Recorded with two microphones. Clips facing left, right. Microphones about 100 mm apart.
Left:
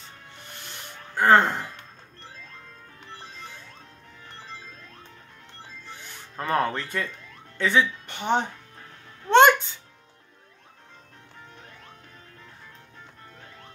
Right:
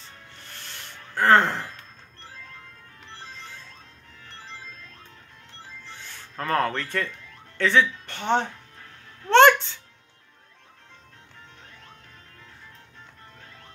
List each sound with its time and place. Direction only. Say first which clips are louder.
1.1 s speech: even; 10° left (ahead or behind)
6.3 s speech: even; 15° left (ahead or behind)
9.3 s music: right 1 dB; 10° left (ahead or behind)